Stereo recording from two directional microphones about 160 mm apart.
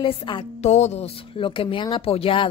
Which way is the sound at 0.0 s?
40° left (ahead or behind).